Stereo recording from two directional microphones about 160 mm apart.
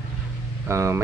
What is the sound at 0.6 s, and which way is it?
Speech, 20° right (ahead or behind).